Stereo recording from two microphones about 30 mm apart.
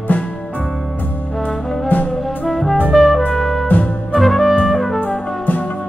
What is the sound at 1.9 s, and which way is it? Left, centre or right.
Music, left.